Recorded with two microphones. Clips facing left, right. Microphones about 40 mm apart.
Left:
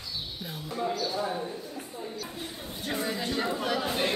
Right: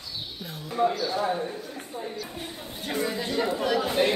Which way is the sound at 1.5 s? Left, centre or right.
Right.